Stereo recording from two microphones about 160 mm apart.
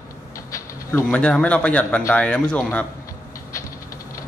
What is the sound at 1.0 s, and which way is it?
A man's voice, 5° left (ahead or behind).